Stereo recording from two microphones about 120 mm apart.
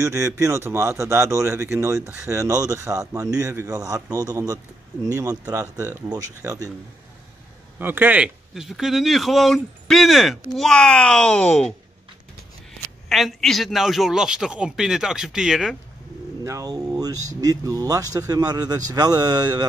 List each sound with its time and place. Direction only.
0.0 s a man's voice: 25° right (ahead or behind)
7.8 s a man's voice: 15° right (ahead or behind)
8.5 s speech: centre (ahead or behind)
13.1 s speech: centre (ahead or behind)
16.4 s a man's voice: 30° right (ahead or behind)